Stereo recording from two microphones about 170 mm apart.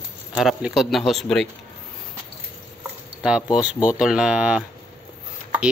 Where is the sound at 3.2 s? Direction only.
5° right (ahead or behind).